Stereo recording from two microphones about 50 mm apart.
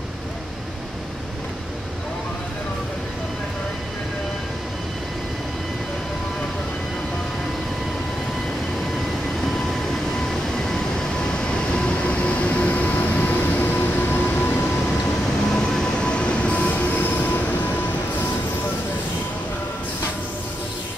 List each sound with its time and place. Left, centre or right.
10.6 s vehicle: centre; by 14.7 s left
15.5 s train: centre; by 17.7 s left